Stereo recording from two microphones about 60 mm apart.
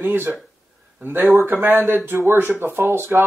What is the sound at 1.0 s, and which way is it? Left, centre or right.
Speech, right.